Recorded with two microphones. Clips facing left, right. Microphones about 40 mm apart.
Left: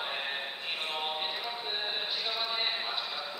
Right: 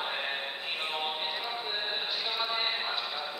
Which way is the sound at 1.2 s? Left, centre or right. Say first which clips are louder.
Right 1 dB; centre.